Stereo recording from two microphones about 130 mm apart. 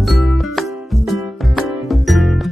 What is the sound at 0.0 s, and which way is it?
Music, centre (ahead or behind).